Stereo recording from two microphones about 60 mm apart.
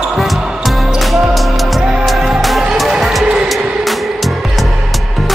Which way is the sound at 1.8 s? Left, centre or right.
Centre.